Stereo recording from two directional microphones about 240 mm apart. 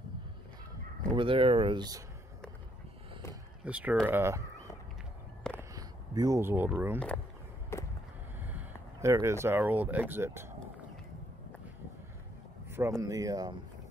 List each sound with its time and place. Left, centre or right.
1.1 s speech: right
3.6 s speech: centre
5.6 s a sound: centre
7.7 s a sound: centre
8.4 s speech: centre
12.7 s speech: centre